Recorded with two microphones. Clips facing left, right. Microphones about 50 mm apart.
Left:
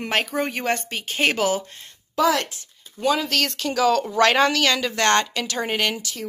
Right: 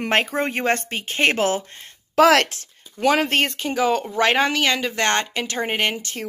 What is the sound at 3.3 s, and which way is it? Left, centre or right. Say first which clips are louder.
A woman's voice: right 2 dB; right.